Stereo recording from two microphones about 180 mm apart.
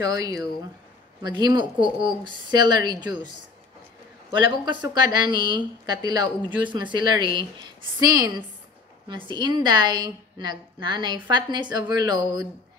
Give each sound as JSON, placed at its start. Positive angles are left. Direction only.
{"t": 0.1, "sound": "a woman's voice", "side_deg": -20}
{"t": 4.8, "sound": "a woman's voice", "side_deg": -25}